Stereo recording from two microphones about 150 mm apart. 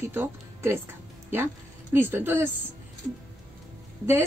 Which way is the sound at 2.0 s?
15° right (ahead or behind).